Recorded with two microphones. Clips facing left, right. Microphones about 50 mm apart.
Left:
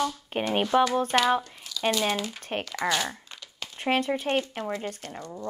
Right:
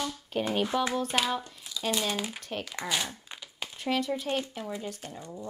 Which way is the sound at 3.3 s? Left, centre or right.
Centre.